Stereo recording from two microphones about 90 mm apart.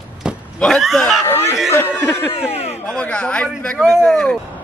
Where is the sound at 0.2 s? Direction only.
10° right (ahead or behind).